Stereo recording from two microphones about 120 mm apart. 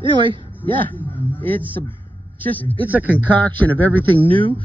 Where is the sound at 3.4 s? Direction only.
15° left (ahead or behind).